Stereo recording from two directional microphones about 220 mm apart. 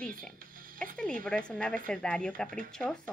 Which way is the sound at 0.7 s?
5° left (ahead or behind).